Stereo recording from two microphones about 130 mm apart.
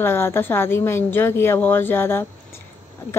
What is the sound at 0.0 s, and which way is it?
Speech, 15° left (ahead or behind).